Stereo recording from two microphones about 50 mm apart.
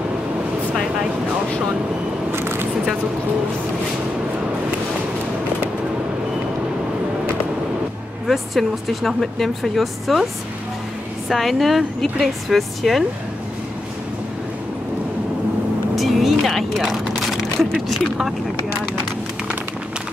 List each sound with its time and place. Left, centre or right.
2.3 s squish: right
8.3 s speech: centre
11.2 s speech: centre
16.0 s music: centre
17.3 s vehicle: centre